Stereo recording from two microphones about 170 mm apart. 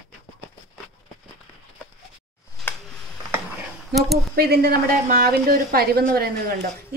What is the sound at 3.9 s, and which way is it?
Speech, centre (ahead or behind).